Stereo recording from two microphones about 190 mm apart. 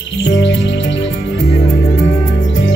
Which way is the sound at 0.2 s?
70° left (ahead or behind).